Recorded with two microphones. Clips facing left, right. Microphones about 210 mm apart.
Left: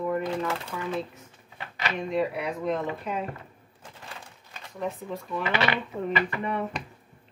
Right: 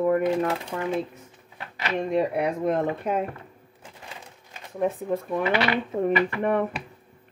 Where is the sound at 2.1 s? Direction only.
55° right (ahead or behind).